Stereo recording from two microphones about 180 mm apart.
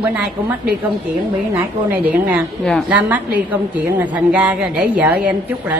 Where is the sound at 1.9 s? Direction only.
10° right (ahead or behind).